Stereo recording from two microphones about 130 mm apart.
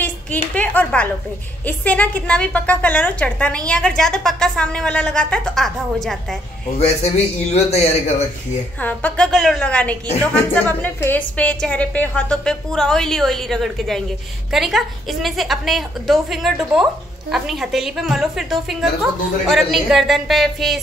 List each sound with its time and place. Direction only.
0.0 s a woman's voice: 15° left (ahead or behind)
7.5 s speech: 55° left (ahead or behind)
8.8 s a woman's voice: 10° left (ahead or behind)